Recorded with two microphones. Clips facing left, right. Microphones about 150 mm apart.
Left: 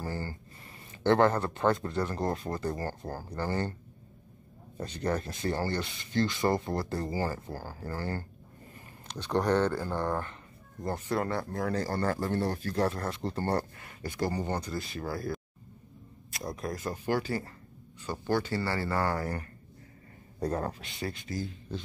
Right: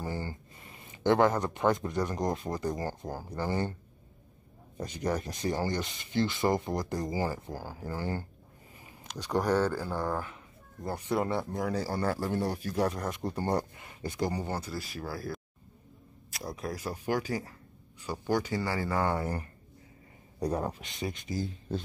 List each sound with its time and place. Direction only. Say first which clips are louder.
0.0 s a sound: even; 15° right (ahead or behind)
1.0 s speech: left 1 dB; 10° right (ahead or behind)
4.7 s speech: even; 10° right (ahead or behind)
11.1 s speech: right 2 dB; 20° right (ahead or behind)